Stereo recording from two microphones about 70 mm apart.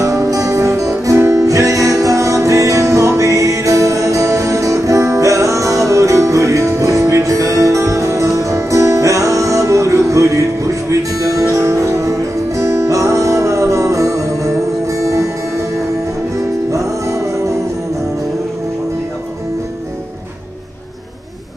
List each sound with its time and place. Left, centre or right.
0.0 s music: right
16.7 s music: right